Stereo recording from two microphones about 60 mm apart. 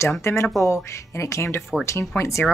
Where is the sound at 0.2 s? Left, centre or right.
Left.